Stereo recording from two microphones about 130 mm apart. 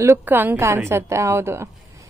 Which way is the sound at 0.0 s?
20° right (ahead or behind).